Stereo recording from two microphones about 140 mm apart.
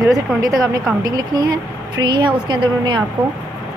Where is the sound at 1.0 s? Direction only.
25° right (ahead or behind).